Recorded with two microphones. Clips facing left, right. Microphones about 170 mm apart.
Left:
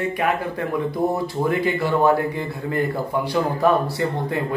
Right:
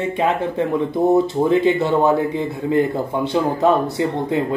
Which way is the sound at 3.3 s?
20° right (ahead or behind).